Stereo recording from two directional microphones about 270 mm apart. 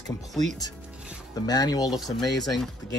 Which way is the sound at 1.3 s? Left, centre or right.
Centre.